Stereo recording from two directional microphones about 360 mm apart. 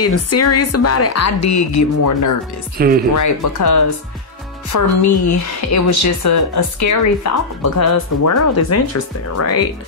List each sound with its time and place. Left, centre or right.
0.0 s speech: left
2.8 s speech: right
3.2 s speech: left